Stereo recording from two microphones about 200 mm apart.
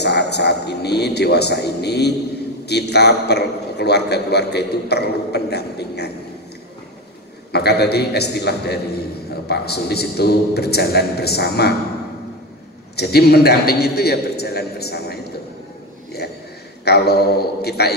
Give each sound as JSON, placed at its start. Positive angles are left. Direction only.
{"t": 0.0, "sound": "a man's voice", "side_deg": 55}
{"t": 7.5, "sound": "a man's voice", "side_deg": 55}
{"t": 12.9, "sound": "a man's voice", "side_deg": 55}
{"t": 16.8, "sound": "a man's voice", "side_deg": 55}